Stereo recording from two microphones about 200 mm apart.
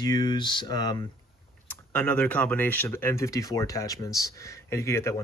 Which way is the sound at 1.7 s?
10° left (ahead or behind).